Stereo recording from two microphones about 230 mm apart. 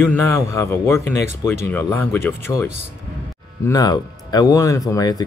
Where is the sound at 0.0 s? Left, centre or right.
Centre.